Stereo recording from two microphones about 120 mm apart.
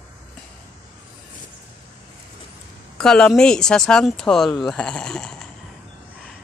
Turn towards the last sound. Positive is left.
turn(degrees=5)  # may be behind; listen again after turning